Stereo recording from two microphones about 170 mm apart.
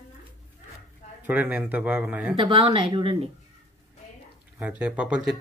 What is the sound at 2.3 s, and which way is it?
Speech, 30° right (ahead or behind).